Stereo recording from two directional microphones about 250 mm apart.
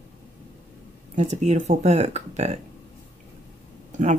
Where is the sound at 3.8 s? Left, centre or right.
Right.